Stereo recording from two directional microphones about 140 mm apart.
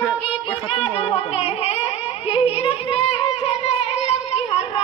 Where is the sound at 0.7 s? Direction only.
40° left (ahead or behind).